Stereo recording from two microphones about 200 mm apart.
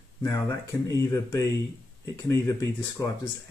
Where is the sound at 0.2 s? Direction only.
15° left (ahead or behind).